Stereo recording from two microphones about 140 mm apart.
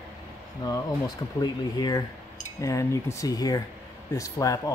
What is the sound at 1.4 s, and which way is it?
A man's voice, 30° left (ahead or behind).